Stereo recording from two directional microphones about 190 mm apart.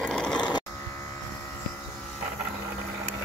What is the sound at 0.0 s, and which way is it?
Electric shaver, 5° left (ahead or behind).